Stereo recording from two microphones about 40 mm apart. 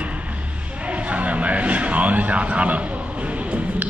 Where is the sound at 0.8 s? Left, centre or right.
Right.